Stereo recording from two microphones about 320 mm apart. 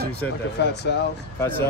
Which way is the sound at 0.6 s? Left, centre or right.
Left.